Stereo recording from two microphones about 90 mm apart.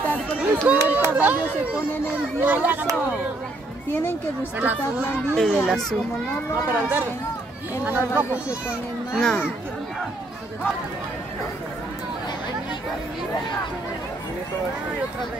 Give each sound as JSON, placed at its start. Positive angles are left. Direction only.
{"t": 0.7, "sound": "a child's voice", "side_deg": -20}
{"t": 2.4, "sound": "a child's voice", "side_deg": -20}
{"t": 3.9, "sound": "speech", "side_deg": 25}
{"t": 4.6, "sound": "a child's voice", "side_deg": -20}
{"t": 5.3, "sound": "speech", "side_deg": 0}
{"t": 6.7, "sound": "a child's voice", "side_deg": -20}